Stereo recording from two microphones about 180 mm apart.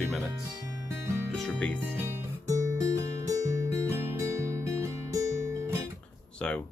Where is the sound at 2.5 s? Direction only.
20° right (ahead or behind).